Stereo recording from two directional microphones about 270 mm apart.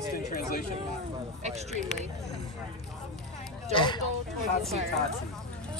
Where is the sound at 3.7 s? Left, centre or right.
Centre.